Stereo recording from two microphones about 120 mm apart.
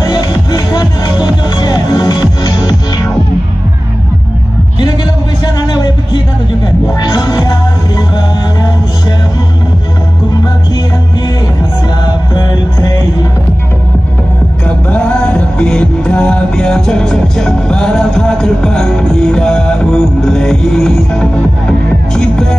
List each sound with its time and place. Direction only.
0.0 s music: 35° left (ahead or behind)
7.0 s music: 35° left (ahead or behind)
14.9 s music: 10° left (ahead or behind)